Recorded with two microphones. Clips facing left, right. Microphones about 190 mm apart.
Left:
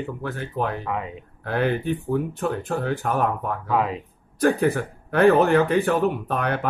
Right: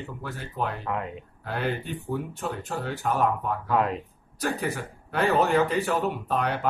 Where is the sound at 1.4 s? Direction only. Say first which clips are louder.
Left 7 dB; 60° left (ahead or behind).